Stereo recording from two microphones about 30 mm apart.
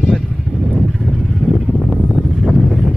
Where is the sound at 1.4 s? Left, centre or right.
Left.